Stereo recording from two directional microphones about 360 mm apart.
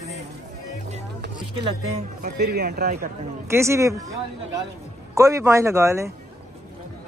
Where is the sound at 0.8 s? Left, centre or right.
Centre.